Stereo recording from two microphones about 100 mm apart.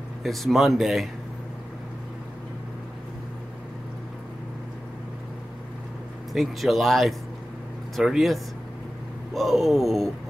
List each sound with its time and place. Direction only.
0.2 s speech: centre (ahead or behind)
6.3 s speech: centre (ahead or behind)